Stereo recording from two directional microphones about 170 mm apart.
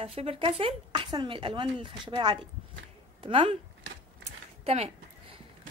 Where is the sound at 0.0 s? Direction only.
35° right (ahead or behind).